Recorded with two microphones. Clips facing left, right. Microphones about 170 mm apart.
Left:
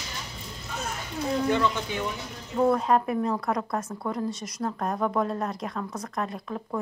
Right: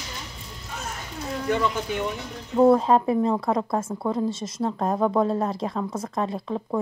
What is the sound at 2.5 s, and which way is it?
Speech, 30° right (ahead or behind).